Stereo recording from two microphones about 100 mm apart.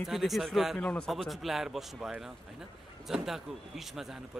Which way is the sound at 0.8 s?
10° left (ahead or behind).